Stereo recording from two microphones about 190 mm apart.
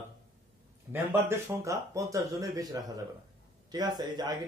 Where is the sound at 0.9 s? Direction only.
15° right (ahead or behind).